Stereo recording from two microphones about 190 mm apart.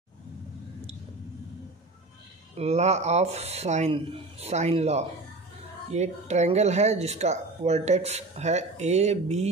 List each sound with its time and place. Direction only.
2.5 s speech: 35° right (ahead or behind)